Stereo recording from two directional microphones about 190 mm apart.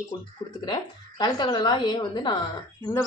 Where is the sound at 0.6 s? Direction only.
20° left (ahead or behind).